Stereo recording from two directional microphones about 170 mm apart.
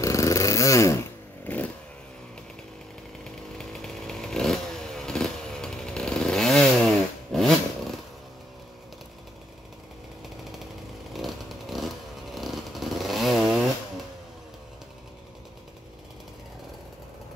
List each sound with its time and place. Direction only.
0.0 s dog: 20° left (ahead or behind)
1.4 s vehicle: 10° left (ahead or behind)
3.3 s chainsaw: centre (ahead or behind)
7.3 s vehicle: centre (ahead or behind)
11.1 s motorcycle: centre (ahead or behind)